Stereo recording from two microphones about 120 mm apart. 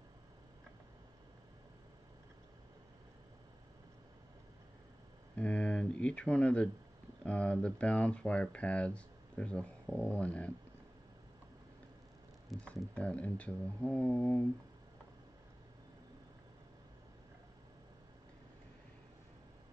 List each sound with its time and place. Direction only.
5.3 s a sound: 10° left (ahead or behind)
7.2 s speech: 10° left (ahead or behind)
12.6 s speech: 10° left (ahead or behind)